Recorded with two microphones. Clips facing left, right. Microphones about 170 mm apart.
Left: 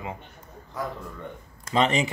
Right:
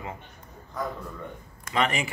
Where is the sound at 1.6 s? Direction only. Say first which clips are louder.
Left 4 dB; 25° left (ahead or behind).